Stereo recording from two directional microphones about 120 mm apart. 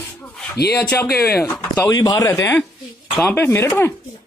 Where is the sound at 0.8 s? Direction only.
15° left (ahead or behind).